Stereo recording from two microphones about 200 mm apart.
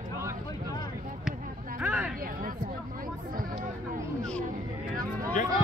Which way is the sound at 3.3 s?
45° right (ahead or behind).